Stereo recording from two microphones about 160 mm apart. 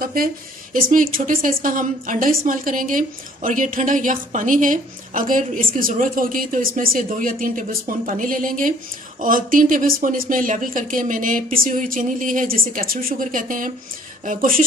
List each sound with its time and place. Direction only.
0.0 s speech: 65° right (ahead or behind)